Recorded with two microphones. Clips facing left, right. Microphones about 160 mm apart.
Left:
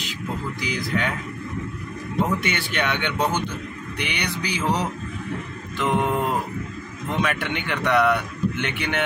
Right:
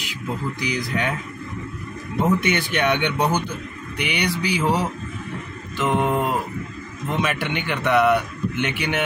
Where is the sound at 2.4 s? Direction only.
15° right (ahead or behind).